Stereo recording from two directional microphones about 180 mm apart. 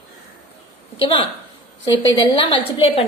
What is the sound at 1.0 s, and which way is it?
Speech, 30° left (ahead or behind).